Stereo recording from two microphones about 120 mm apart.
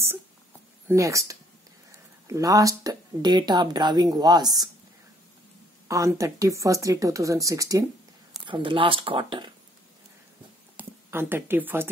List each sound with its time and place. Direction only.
0.8 s speech: 25° right (ahead or behind)
5.9 s speech: 25° right (ahead or behind)
8.5 s speech: 45° right (ahead or behind)
10.8 s speech: 20° right (ahead or behind)